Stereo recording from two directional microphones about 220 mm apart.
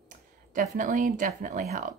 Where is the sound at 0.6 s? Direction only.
35° right (ahead or behind).